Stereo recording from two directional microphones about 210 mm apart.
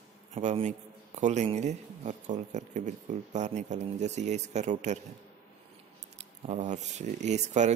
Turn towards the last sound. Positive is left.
turn(degrees=-35)  # may be behind; listen again after turning